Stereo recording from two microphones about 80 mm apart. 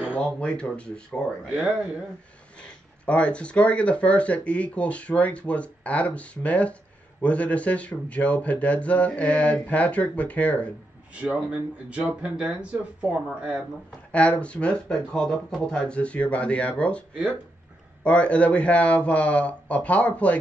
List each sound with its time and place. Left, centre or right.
0.4 s speech: centre
3.1 s speech: centre
11.1 s speech: centre
13.8 s speech: centre
18.0 s speech: centre